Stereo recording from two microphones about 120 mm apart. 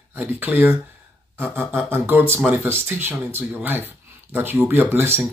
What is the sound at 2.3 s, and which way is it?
Speech, 15° right (ahead or behind).